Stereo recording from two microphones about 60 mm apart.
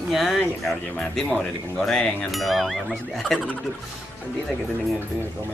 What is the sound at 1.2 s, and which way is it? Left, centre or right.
Speech, left.